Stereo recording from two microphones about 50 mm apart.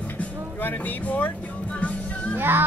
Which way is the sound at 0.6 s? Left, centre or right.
Left.